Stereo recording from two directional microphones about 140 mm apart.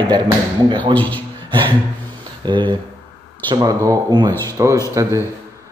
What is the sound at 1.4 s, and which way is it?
Music, 35° right (ahead or behind).